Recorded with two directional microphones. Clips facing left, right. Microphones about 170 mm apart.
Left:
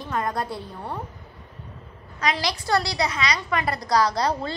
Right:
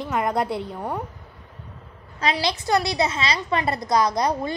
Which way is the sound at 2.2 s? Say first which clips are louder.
Right 2 dB; 25° right (ahead or behind).